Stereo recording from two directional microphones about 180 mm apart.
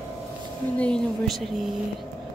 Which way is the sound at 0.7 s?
5° left (ahead or behind).